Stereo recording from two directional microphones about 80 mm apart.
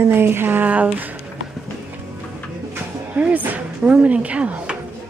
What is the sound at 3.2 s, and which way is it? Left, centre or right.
Speech, centre.